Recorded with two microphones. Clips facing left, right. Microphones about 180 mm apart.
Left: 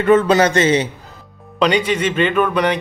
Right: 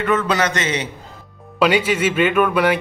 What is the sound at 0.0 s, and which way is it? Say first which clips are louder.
Speech: left 6 dB; 30° left (ahead or behind).